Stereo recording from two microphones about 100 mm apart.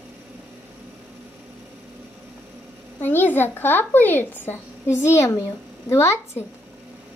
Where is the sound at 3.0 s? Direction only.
20° left (ahead or behind).